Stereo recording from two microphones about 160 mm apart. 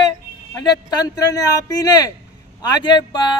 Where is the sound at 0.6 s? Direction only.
25° left (ahead or behind).